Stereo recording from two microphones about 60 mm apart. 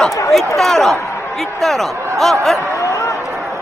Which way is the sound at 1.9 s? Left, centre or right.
Right.